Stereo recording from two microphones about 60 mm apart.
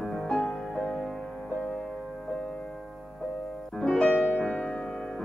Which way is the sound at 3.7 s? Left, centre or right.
Centre.